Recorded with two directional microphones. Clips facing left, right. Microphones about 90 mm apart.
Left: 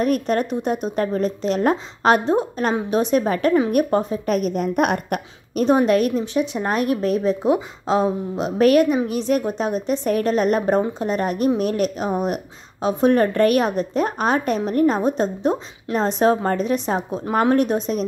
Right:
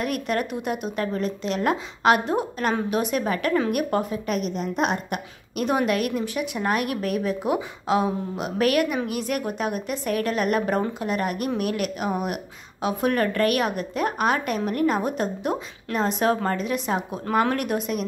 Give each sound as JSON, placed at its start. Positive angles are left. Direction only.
{"t": 0.0, "sound": "a woman's voice", "side_deg": 35}
{"t": 4.4, "sound": "a woman's voice", "side_deg": 50}
{"t": 5.5, "sound": "a woman's voice", "side_deg": 35}